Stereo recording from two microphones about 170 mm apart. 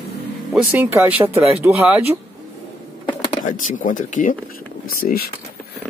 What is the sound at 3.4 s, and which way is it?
Speech, 50° left (ahead or behind).